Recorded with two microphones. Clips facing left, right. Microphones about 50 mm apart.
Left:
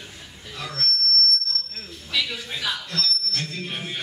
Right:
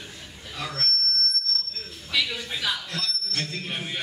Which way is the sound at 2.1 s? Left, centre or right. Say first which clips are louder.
Even; centre.